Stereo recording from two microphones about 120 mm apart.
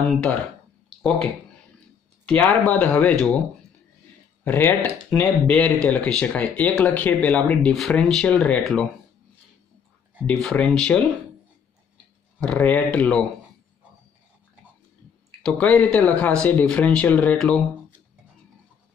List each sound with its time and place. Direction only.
0.1 s speech: 10° left (ahead or behind)
2.2 s speech: 5° left (ahead or behind)
4.5 s speech: 20° left (ahead or behind)
5.2 s speech: 5° left (ahead or behind)
10.2 s speech: 5° left (ahead or behind)
12.4 s speech: 10° left (ahead or behind)
15.4 s speech: 10° left (ahead or behind)